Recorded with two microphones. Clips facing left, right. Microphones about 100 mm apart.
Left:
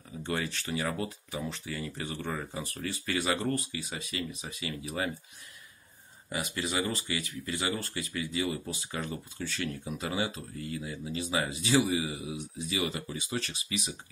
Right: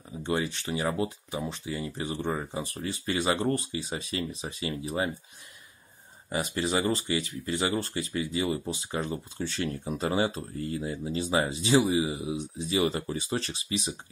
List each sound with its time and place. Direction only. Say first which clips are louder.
0.2 s speech: right 4 dB; 20° right (ahead or behind)
6.3 s speech: right 4 dB; 30° right (ahead or behind)